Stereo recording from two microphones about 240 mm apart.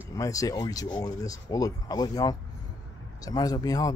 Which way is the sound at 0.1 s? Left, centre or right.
Centre.